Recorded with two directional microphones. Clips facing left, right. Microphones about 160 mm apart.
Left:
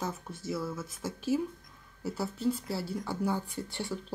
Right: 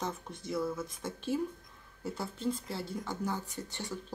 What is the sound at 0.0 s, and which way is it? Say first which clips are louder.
Speech: left 2 dB; 5° left (ahead or behind).